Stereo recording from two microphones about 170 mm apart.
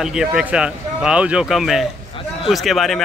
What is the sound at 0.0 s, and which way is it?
Speech, 5° right (ahead or behind).